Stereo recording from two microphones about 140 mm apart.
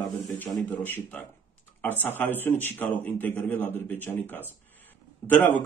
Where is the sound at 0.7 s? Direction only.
15° left (ahead or behind).